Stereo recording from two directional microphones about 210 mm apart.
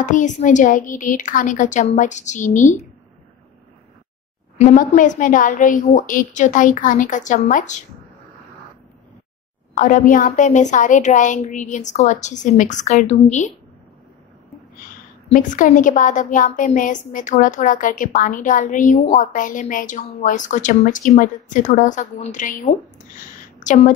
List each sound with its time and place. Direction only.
0.0 s a woman's voice: 35° left (ahead or behind)
4.6 s a woman's voice: 35° left (ahead or behind)
9.8 s a woman's voice: 40° left (ahead or behind)
15.2 s a woman's voice: 35° left (ahead or behind)